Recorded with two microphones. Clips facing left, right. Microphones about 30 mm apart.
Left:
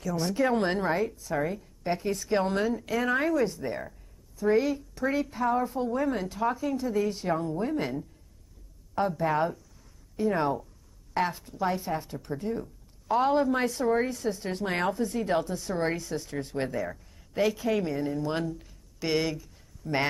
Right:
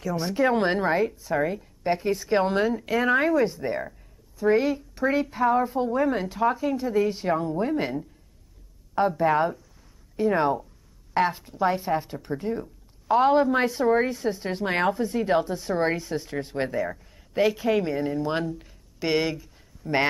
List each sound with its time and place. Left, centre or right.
0.0 s a woman's voice: centre